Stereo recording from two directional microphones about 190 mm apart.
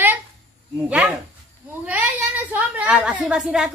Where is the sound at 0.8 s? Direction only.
5° right (ahead or behind).